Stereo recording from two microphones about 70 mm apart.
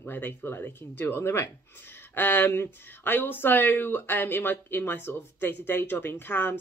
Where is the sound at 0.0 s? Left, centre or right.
Left.